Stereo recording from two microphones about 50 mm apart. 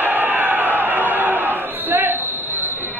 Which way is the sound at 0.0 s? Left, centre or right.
Right.